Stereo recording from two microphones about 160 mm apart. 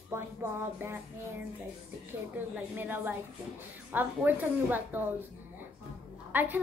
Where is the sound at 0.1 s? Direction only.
15° right (ahead or behind).